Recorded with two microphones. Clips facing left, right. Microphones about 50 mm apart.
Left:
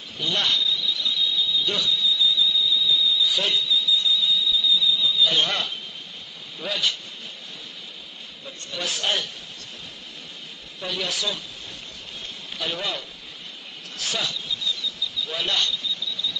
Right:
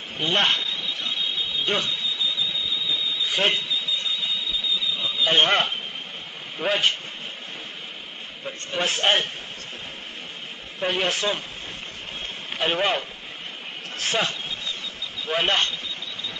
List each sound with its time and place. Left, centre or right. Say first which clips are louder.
0.2 s a sound: right 2 dB; right
6.6 s a man's voice: right 4 dB; right
8.5 s a man's voice: right 5 dB; right
10.8 s a man's voice: right 5 dB; right
12.5 s a man's voice: right 6 dB; right
13.9 s a sound: right 4 dB; right